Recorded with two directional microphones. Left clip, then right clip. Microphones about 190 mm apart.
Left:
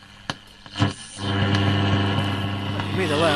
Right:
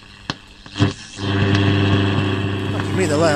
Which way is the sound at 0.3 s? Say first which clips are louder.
Right 3 dB; 50° left (ahead or behind).